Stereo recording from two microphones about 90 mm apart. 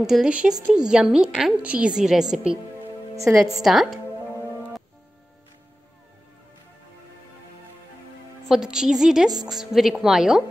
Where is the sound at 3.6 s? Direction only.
Centre (ahead or behind).